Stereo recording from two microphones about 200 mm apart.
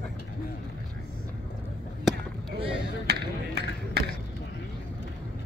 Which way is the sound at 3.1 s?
55° right (ahead or behind).